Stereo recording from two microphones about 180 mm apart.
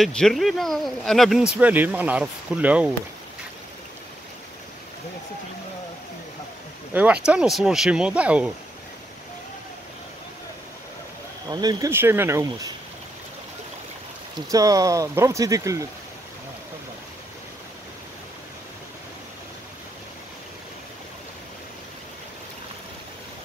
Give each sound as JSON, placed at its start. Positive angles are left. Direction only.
{"t": 0.0, "sound": "speech", "side_deg": 5}
{"t": 6.9, "sound": "speech", "side_deg": -10}
{"t": 11.4, "sound": "speech", "side_deg": -20}
{"t": 14.5, "sound": "speech", "side_deg": -20}